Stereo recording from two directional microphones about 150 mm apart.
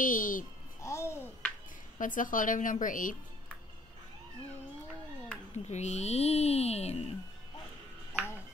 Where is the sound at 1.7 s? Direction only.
60° left (ahead or behind).